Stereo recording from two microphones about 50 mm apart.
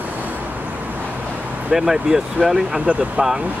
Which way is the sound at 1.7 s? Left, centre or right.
Centre.